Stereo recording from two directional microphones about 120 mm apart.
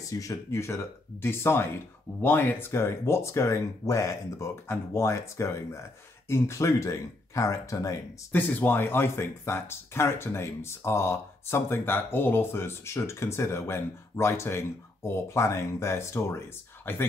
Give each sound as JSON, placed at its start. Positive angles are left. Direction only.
{"t": 0.2, "sound": "speech", "side_deg": 25}
{"t": 8.3, "sound": "speech", "side_deg": 15}